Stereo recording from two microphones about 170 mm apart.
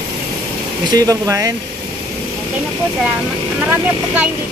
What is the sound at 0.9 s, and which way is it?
Speech, 20° right (ahead or behind).